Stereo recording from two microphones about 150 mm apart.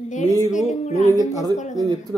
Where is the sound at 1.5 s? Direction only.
55° left (ahead or behind).